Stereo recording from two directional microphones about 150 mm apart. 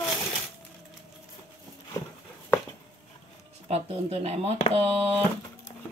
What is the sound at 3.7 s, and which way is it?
Speech, 45° right (ahead or behind).